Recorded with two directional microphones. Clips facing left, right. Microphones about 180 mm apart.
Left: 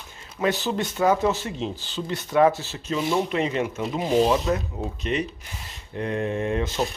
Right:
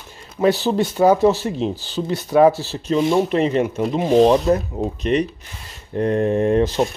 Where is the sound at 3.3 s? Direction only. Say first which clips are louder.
Right 7 dB; 35° right (ahead or behind).